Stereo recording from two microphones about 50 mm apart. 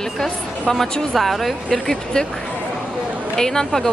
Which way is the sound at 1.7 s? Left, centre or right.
Centre.